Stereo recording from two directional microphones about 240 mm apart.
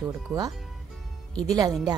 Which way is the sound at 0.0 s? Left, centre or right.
Centre.